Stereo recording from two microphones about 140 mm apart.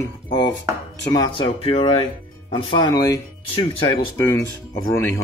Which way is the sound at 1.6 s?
40° left (ahead or behind).